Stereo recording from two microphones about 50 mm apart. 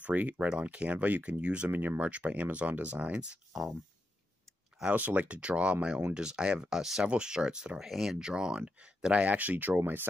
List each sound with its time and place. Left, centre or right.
0.0 s speech: right
0.5 s speech: right
1.7 s speech: right
2.0 s speech: right
4.9 s speech: right; by 7.9 s centre
7.9 s speech: centre
8.2 s speech: centre
9.3 s speech: right